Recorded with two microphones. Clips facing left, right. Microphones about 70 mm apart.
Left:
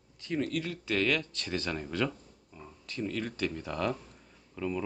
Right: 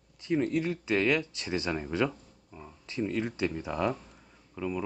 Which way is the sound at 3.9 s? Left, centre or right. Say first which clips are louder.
Even; centre.